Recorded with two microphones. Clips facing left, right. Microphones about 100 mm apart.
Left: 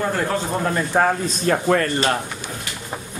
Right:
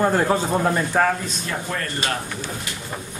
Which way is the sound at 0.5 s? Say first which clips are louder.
Right 2 dB; 5° right (ahead or behind).